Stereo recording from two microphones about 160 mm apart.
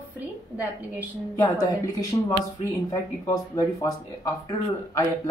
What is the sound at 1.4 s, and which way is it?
Speech, 20° left (ahead or behind).